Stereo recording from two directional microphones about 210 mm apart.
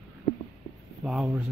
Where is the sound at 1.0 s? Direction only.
Centre (ahead or behind).